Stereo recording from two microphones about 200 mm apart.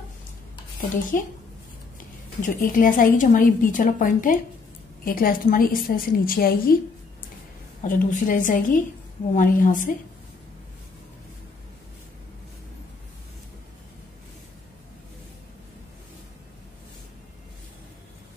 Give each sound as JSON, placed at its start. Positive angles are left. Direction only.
{"t": 1.1, "sound": "a woman's voice", "side_deg": 45}
{"t": 2.4, "sound": "a woman's voice", "side_deg": 40}
{"t": 7.8, "sound": "a woman's voice", "side_deg": 40}